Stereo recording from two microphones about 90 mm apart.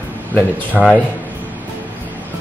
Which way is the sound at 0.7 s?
Centre (ahead or behind).